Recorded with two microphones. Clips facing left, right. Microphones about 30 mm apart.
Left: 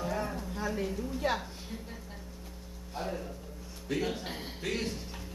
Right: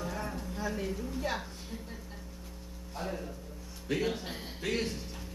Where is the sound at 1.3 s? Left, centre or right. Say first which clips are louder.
Left 3 dB; centre.